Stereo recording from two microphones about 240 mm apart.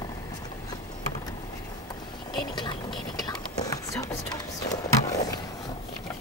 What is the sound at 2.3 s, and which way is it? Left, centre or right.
Whispering, centre.